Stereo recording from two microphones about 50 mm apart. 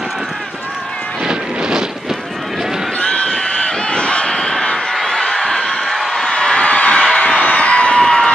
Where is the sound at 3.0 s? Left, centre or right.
Left.